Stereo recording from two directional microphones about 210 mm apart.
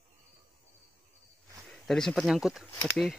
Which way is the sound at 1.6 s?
Centre (ahead or behind).